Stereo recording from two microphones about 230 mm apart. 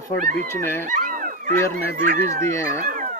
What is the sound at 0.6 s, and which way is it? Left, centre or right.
Fowl, centre.